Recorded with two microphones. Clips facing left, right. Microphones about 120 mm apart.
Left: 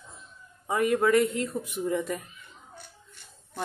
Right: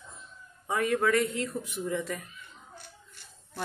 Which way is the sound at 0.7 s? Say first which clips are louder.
Left 3 dB; 15° left (ahead or behind).